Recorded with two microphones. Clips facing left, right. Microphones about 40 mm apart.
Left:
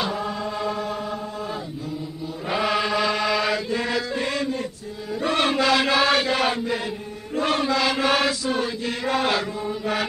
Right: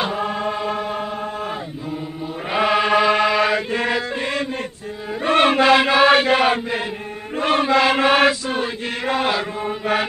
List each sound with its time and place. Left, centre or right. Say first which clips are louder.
0.0 s music: right 4 dB; right
2.5 s chant: right 6 dB; right
5.2 s a sound: right 6 dB; right
5.9 s chant: right 6 dB; right